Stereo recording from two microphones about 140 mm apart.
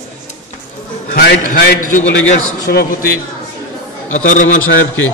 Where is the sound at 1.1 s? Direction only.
70° left (ahead or behind).